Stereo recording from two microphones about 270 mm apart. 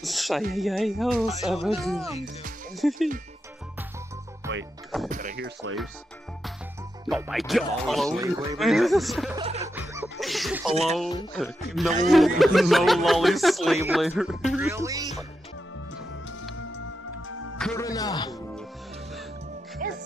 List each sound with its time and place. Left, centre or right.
0.0 s speech: centre
4.5 s music: right
5.1 s speech: right
7.1 s speech: centre
8.2 s speech: centre
8.5 s speech: centre
9.4 s music: right
9.8 s a sound: centre
11.8 s speech: centre
17.3 s music: left
17.6 s speech: centre
17.8 s speech: centre
19.8 s music: right